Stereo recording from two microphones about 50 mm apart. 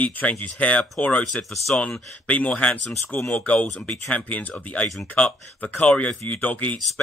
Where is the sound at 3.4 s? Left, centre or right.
Left.